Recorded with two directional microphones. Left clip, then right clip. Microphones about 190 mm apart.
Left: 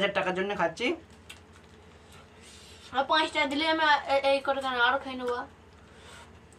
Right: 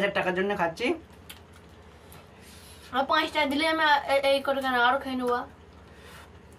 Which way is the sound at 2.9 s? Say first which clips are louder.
Right 1 dB; 20° right (ahead or behind).